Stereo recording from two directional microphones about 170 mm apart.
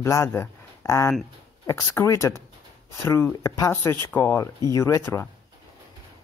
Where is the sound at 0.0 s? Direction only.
15° left (ahead or behind).